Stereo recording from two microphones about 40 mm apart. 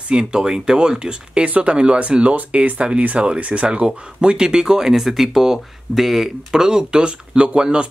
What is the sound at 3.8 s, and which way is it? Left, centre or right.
Speech, right.